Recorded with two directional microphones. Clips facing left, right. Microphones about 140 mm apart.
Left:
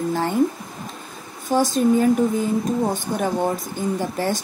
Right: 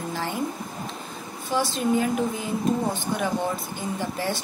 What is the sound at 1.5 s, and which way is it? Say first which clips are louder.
Speech: left 6 dB; 45° left (ahead or behind).